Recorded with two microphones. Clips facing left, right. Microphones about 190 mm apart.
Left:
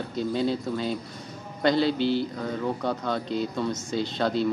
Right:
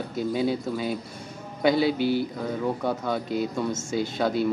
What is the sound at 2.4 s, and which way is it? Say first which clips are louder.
Speech: right 1 dB; 5° right (ahead or behind).